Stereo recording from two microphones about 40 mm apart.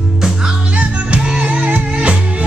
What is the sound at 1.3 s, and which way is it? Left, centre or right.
Music, right.